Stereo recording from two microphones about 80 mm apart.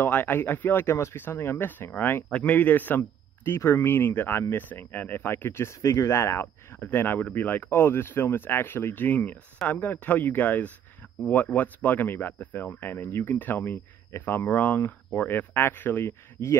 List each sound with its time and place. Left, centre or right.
0.0 s speech: left